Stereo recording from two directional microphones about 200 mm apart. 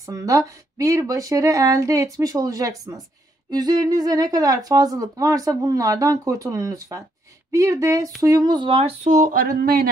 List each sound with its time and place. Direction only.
0.0 s speech: 15° right (ahead or behind); by 9.8 s 45° right (ahead or behind)